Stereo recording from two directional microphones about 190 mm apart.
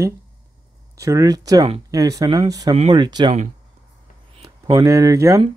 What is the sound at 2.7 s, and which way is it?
Speech, 30° right (ahead or behind).